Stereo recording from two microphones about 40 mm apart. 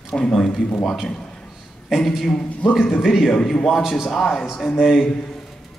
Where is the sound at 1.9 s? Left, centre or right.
Centre.